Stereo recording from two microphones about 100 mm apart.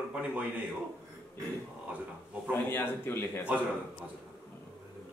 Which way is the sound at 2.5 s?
20° left (ahead or behind).